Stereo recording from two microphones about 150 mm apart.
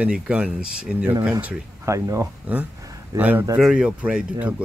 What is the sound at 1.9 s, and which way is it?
Speech, 20° right (ahead or behind).